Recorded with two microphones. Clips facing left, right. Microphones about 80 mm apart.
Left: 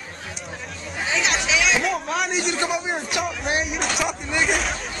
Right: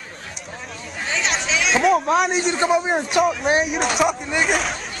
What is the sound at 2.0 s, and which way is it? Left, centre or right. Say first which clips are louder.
Speech: right 7 dB; right.